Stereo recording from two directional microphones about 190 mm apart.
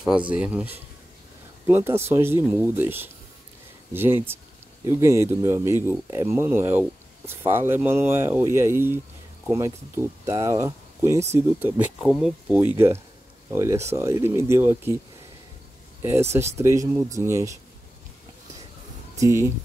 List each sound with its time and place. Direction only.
0.3 s speech: 5° right (ahead or behind)
12.0 s speech: 5° right (ahead or behind)
16.0 s speech: 15° right (ahead or behind)
19.1 s speech: 15° right (ahead or behind)